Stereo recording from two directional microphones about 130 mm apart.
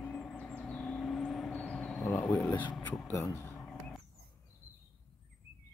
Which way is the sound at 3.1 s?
20° left (ahead or behind).